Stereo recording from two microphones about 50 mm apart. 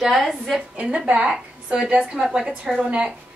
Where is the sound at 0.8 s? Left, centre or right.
Right.